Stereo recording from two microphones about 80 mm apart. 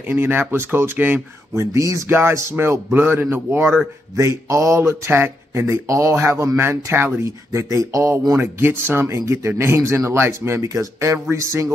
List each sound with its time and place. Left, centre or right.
0.1 s speech: right
1.5 s speech: right
2.0 s speech: right
4.2 s speech: right